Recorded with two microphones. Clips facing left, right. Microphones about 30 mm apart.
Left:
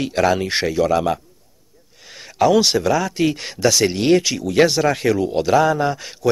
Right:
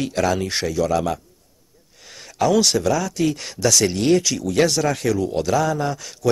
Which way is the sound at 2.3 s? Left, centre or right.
Centre.